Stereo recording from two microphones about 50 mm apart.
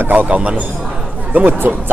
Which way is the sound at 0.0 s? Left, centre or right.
Right.